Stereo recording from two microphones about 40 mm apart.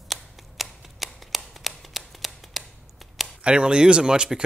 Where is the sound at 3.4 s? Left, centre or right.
Right.